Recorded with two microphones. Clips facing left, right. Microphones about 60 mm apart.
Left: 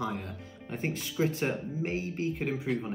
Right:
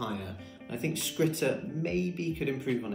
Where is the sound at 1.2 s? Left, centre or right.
Centre.